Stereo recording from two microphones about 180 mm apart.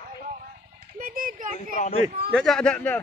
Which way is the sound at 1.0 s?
50° right (ahead or behind).